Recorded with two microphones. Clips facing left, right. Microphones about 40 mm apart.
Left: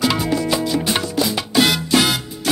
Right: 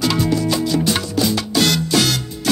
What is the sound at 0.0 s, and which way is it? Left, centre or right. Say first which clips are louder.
Music: right 1 dB; centre.